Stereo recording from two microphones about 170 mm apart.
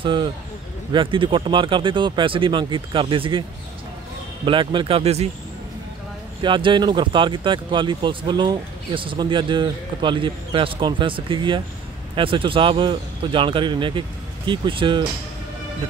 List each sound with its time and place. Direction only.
0.0 s speech: 30° right (ahead or behind)
4.5 s speech: 30° right (ahead or behind)
6.4 s speech: 30° right (ahead or behind)